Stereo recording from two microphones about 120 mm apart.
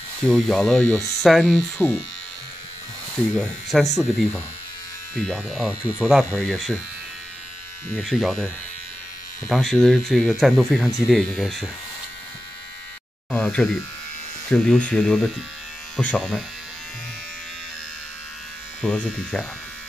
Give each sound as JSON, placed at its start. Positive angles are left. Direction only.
{"t": 0.2, "sound": "speech", "side_deg": 0}
{"t": 3.2, "sound": "speech", "side_deg": 5}
{"t": 3.8, "sound": "speech", "side_deg": 30}
{"t": 5.1, "sound": "speech", "side_deg": 5}
{"t": 5.9, "sound": "speech", "side_deg": -10}
{"t": 6.4, "sound": "speech", "side_deg": 5}
{"t": 8.0, "sound": "speech", "side_deg": 0}
{"t": 9.5, "sound": "speech", "side_deg": 5}
{"t": 13.3, "sound": "electric shaver", "side_deg": 5}
{"t": 14.5, "sound": "speech", "side_deg": 5}
{"t": 18.9, "sound": "speech", "side_deg": 5}